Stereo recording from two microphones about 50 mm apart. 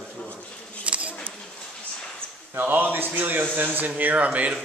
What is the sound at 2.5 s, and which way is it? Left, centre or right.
Speech, right.